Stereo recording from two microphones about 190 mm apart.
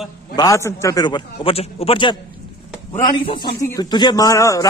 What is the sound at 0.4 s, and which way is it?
Speech, 15° left (ahead or behind).